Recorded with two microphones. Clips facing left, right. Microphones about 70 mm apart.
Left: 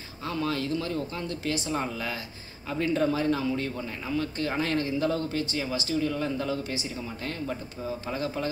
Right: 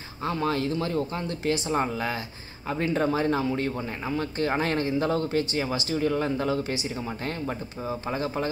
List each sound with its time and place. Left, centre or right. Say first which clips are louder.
0.2 s speech: right 3 dB; right